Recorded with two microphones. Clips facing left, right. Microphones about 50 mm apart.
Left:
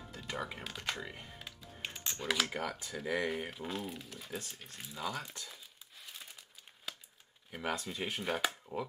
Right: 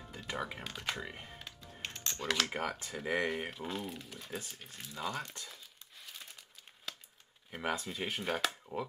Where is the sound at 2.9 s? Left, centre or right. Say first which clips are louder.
Right 1 dB; centre.